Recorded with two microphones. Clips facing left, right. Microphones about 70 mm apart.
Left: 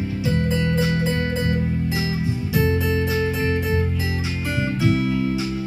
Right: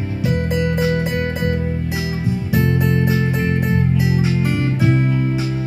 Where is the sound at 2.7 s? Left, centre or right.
Centre.